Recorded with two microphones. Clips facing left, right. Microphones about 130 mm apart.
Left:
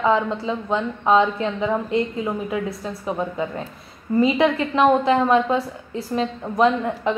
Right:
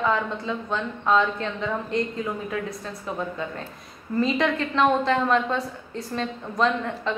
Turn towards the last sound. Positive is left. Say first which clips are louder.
# left 5 dB
turn(degrees=20)  # may be behind; listen again after turning